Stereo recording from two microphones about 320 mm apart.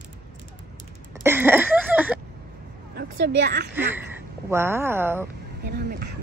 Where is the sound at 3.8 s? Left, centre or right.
Centre.